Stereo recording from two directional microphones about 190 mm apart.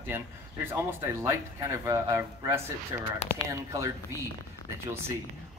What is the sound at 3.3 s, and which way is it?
Speech, 50° left (ahead or behind).